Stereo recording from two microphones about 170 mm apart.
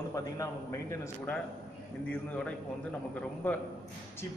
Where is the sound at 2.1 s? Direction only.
10° left (ahead or behind).